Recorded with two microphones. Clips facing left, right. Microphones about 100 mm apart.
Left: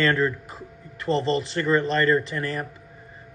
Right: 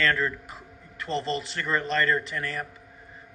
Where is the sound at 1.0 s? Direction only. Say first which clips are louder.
Left 6 dB; 40° left (ahead or behind).